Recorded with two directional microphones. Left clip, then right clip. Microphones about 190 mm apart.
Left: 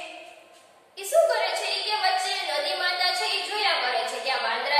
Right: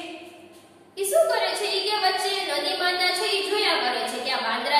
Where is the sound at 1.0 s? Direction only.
Centre (ahead or behind).